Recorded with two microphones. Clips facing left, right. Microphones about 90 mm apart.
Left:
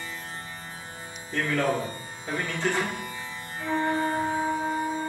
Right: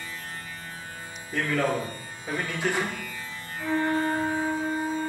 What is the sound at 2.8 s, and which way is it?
Music, 20° left (ahead or behind).